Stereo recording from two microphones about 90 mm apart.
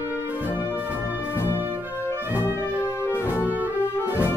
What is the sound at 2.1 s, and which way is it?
Music, 20° right (ahead or behind).